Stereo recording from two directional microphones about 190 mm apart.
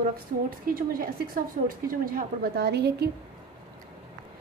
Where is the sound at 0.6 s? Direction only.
50° right (ahead or behind).